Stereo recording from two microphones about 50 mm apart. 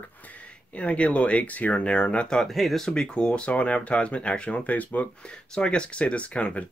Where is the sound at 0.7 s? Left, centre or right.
Left.